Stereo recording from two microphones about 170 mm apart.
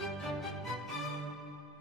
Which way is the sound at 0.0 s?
Centre (ahead or behind).